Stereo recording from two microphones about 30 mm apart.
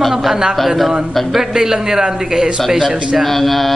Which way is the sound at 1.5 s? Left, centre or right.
Centre.